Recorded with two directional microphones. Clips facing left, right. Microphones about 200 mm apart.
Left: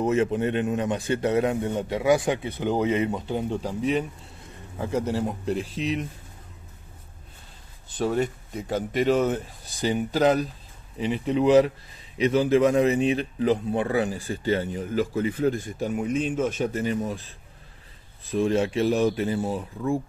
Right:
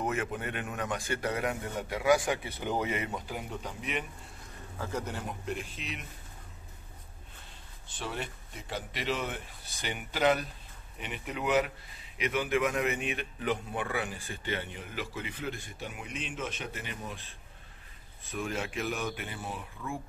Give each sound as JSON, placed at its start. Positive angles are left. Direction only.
{"t": 0.0, "sound": "a man's voice", "side_deg": 25}
{"t": 7.9, "sound": "a man's voice", "side_deg": 45}
{"t": 18.3, "sound": "a man's voice", "side_deg": 30}